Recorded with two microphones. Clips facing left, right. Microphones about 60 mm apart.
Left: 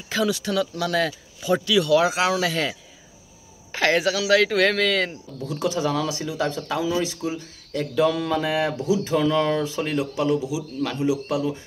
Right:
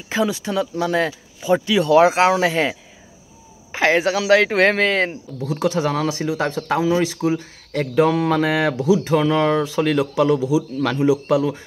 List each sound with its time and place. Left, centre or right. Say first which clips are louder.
0.1 s speech: right 2 dB; right
3.7 s speech: right 4 dB; centre
4.0 s speech: right 4 dB; right
5.4 s speech: right 4 dB; right
9.1 s a man's voice: right 4 dB; right